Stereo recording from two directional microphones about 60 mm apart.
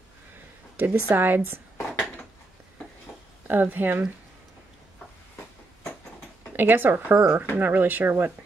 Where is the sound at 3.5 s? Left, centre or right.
Right.